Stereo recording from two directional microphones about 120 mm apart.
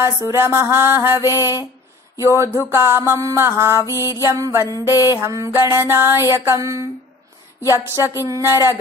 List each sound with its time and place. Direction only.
0.0 s music: 20° right (ahead or behind)
3.7 s music: 25° left (ahead or behind)
4.3 s music: 20° right (ahead or behind)